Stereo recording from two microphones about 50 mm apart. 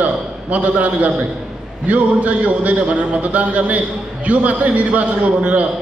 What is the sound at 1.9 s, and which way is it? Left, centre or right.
A man's voice, right.